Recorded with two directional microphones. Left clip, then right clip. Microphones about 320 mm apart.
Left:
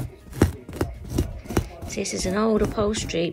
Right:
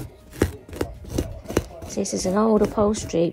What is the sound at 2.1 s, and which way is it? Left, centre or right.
Speech, centre.